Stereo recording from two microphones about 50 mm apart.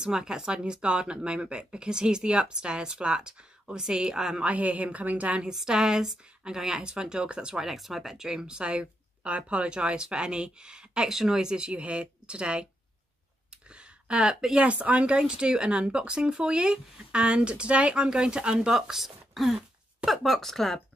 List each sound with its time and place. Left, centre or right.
0.0 s speech: centre
4.5 s speech: right
5.5 s speech: centre
13.7 s a sound: right
14.3 s speech: centre
14.6 s speech: right; by 20.8 s centre